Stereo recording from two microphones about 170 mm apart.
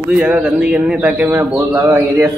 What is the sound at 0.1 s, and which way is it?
Speech, 5° right (ahead or behind).